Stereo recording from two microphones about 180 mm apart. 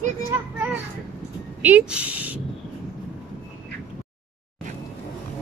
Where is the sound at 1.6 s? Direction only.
5° right (ahead or behind).